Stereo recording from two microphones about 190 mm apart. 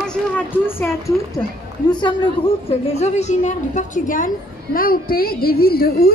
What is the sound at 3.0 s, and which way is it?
A woman's voice, 35° left (ahead or behind).